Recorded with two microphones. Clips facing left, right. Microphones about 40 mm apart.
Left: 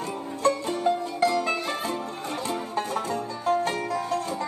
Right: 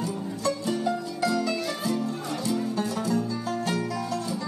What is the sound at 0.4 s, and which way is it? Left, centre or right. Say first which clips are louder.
Music: left 4 dB; left.